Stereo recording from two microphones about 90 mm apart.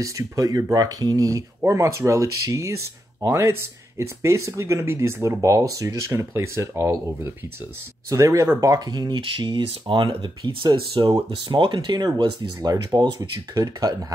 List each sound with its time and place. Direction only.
0.0 s speech: 40° right (ahead or behind); by 9.6 s 55° right (ahead or behind)
9.6 s speech: 80° right; by 13.1 s 55° right (ahead or behind)
13.2 s speech: 40° right (ahead or behind)